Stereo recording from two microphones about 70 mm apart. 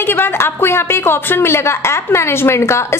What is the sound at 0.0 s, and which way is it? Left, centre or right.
A woman's voice, left.